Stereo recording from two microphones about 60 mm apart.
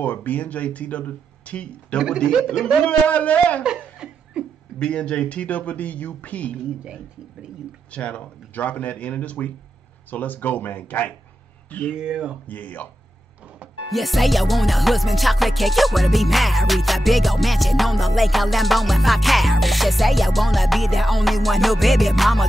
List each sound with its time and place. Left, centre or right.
0.0 s speech: left
4.0 s laughter: centre
4.7 s speech: centre
7.9 s speech: centre
12.0 s speech: centre
12.4 s speech: left
13.8 s music: centre